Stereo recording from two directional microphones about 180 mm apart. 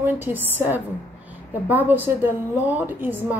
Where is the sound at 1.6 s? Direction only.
10° right (ahead or behind).